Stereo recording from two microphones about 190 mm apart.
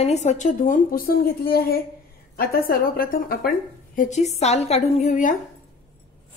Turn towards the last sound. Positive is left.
turn(degrees=40)  # may be behind; listen again after turning